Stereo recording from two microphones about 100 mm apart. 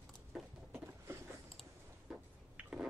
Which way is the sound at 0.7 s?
25° right (ahead or behind).